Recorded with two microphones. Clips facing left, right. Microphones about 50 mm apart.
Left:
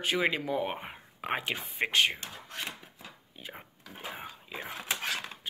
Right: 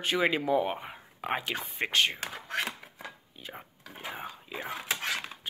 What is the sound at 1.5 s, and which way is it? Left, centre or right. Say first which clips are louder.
Speech: even; centre.